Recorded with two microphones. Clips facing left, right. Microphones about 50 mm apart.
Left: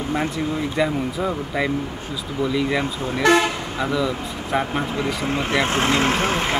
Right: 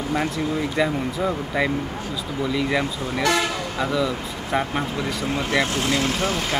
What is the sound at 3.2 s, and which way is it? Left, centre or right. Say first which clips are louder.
Speech: left 5 dB; left.